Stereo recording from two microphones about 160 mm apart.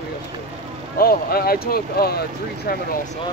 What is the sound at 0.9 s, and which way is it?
Speech, 70° left (ahead or behind).